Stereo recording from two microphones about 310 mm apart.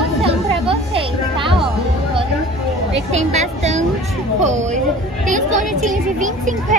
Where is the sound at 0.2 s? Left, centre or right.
Centre.